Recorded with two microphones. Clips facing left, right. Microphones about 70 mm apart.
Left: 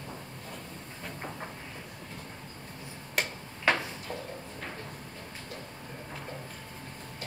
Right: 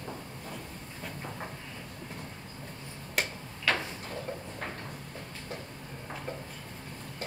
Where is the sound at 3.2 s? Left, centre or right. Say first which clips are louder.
Even; centre.